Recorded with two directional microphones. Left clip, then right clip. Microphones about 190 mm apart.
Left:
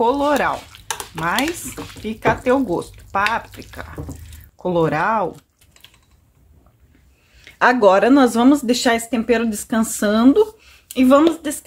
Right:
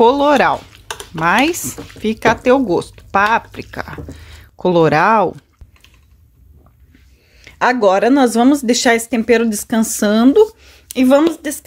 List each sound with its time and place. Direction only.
0.0 s speech: 45° right (ahead or behind)
1.2 s speech: 55° right (ahead or behind)
7.3 s speech: 15° right (ahead or behind); by 11.5 s 35° right (ahead or behind)